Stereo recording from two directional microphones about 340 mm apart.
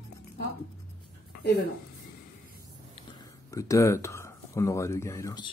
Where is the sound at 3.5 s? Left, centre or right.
Centre.